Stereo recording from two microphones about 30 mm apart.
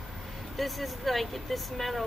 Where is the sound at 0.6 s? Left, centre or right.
Centre.